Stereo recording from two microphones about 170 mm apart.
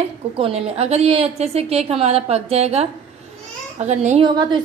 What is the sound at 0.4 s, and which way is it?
A woman's voice, 35° right (ahead or behind).